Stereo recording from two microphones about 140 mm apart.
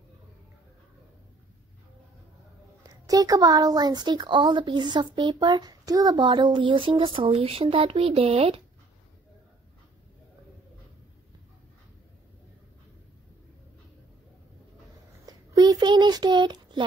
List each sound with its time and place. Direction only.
3.1 s a child's voice: 25° right (ahead or behind); by 8.6 s 45° right (ahead or behind)
15.2 s child singing: 25° right (ahead or behind)